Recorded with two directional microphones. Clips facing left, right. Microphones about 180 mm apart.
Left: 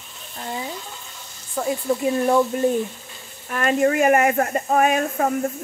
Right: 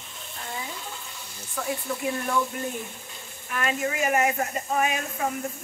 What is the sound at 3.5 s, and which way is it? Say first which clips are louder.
Speech: left 9 dB; 45° left (ahead or behind).